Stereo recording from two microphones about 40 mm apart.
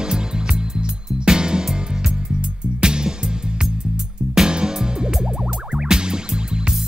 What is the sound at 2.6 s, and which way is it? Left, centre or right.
Music, right.